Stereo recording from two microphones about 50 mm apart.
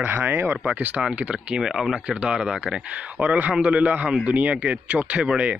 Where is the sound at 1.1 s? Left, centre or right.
Right.